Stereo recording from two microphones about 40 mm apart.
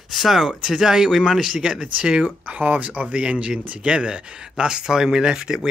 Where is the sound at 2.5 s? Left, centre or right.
Right.